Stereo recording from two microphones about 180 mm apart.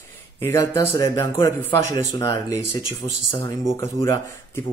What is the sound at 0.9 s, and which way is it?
Speech, 25° left (ahead or behind).